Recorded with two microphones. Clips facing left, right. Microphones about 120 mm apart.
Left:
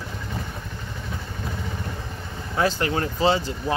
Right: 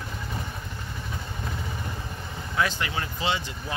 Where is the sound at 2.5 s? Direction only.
35° left (ahead or behind).